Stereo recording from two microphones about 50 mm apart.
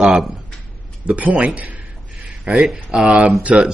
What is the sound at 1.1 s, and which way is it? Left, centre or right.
Speech, right.